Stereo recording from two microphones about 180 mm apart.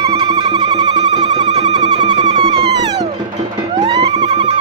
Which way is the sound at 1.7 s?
25° right (ahead or behind).